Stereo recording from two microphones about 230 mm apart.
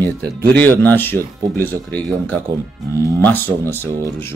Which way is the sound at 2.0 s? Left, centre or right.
Centre.